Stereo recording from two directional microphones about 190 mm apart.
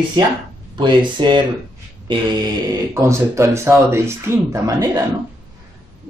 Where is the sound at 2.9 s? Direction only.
15° right (ahead or behind).